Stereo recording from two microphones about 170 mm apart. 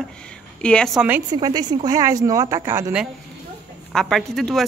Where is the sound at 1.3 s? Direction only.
25° right (ahead or behind).